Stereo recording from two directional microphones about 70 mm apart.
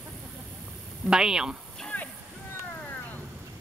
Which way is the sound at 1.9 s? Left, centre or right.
Left.